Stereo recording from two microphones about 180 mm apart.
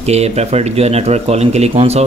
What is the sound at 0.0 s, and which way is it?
A man's voice, 35° right (ahead or behind).